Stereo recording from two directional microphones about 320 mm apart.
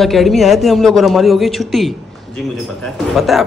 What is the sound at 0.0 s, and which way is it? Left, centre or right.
A man's voice, centre.